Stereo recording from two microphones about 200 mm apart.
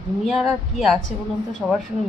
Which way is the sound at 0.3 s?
Centre (ahead or behind).